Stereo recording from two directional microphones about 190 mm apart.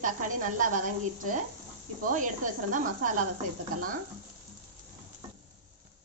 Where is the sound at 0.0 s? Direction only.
45° right (ahead or behind).